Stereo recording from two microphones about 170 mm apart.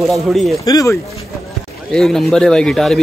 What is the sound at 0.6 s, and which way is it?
Speech, 20° left (ahead or behind).